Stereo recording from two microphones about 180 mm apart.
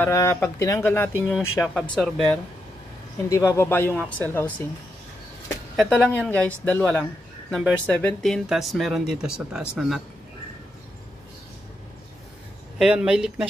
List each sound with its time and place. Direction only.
0.0 s speech: 15° left (ahead or behind)
1.6 s speech: centre (ahead or behind)
3.3 s speech: 15° left (ahead or behind)
5.8 s speech: 5° left (ahead or behind)
12.7 s speech: 5° right (ahead or behind)